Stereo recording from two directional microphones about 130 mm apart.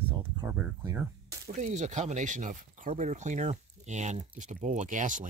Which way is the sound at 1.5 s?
65° right (ahead or behind).